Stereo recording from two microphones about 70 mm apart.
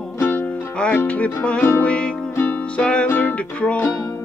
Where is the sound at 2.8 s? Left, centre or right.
Centre.